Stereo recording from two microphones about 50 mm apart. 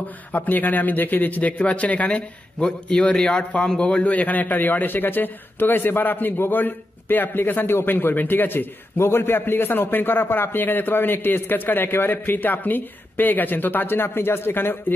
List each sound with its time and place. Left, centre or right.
0.3 s a man's voice: left